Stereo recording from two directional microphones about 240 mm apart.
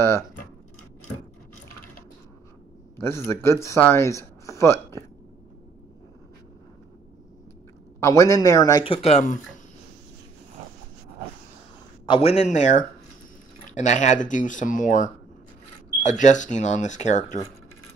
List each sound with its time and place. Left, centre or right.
3.0 s speech: centre
8.0 s speech: centre; by 9.4 s left
12.1 s a man's voice: left